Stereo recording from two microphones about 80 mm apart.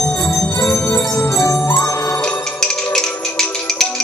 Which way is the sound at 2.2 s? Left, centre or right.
Centre.